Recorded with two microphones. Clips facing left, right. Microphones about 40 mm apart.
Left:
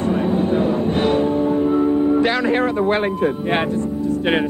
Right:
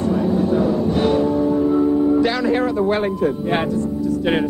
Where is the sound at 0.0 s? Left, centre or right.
Left.